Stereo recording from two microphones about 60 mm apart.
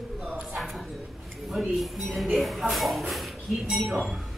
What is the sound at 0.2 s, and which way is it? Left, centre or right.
Bow-wow, right.